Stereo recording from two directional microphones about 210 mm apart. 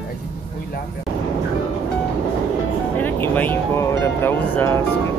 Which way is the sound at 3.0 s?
10° left (ahead or behind).